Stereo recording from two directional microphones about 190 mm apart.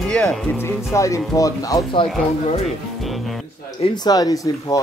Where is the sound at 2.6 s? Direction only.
Centre (ahead or behind).